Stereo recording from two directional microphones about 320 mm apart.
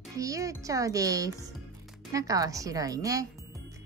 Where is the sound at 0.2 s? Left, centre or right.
Centre.